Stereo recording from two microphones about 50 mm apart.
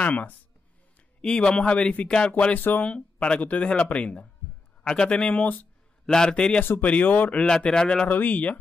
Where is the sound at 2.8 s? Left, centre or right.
Centre.